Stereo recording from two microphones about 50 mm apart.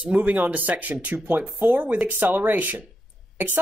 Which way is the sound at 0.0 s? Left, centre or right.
Right.